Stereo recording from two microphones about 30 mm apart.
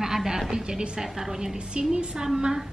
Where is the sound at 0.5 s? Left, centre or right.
Right.